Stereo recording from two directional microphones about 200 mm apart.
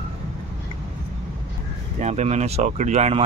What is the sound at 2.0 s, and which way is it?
Speech, 35° right (ahead or behind).